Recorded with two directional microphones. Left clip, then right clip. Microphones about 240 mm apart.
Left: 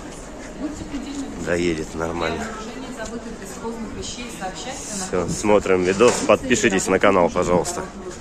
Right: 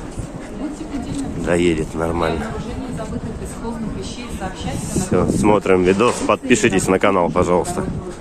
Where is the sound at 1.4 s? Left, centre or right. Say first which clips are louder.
Right 5 dB; centre.